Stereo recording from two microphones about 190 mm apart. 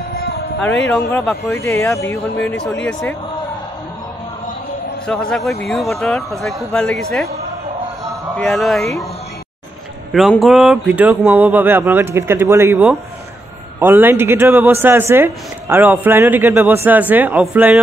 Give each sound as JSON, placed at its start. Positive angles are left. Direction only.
{"t": 0.1, "sound": "music", "side_deg": 55}
{"t": 1.2, "sound": "speech", "side_deg": 0}
{"t": 1.6, "sound": "speech", "side_deg": 15}
{"t": 2.4, "sound": "speech", "side_deg": 5}
{"t": 5.0, "sound": "speech", "side_deg": 5}
{"t": 8.4, "sound": "speech", "side_deg": 0}
{"t": 10.1, "sound": "a man's voice", "side_deg": 0}